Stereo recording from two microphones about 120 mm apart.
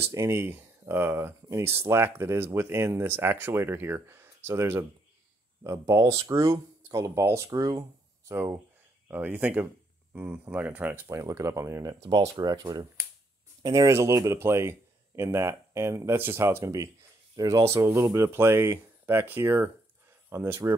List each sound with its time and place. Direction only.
0.0 s speech: 20° right (ahead or behind)
9.1 s speech: 15° right (ahead or behind)